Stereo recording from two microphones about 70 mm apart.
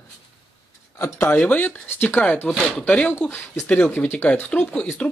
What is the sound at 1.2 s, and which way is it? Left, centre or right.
Speech, left.